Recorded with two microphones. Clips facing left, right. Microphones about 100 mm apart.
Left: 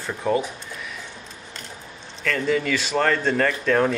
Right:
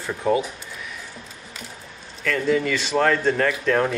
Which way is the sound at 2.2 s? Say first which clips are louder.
Right 1 dB; centre (ahead or behind).